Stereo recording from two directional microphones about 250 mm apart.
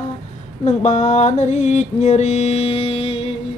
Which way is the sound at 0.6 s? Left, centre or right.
Left.